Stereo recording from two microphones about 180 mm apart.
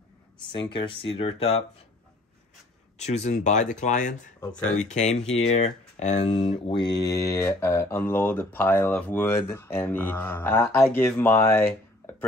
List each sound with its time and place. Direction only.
0.4 s speech: 25° left (ahead or behind)
3.0 s speech: 40° left (ahead or behind); by 11.7 s 15° left (ahead or behind)